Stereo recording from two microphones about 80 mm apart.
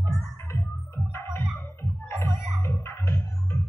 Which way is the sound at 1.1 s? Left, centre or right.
Left.